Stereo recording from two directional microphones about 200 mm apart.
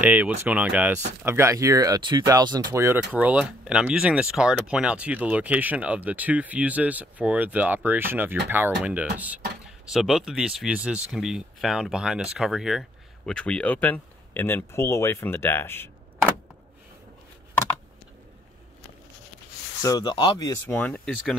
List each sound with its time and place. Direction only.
0.0 s speech: 10° right (ahead or behind); by 16.3 s 10° left (ahead or behind)
19.8 s speech: 20° left (ahead or behind)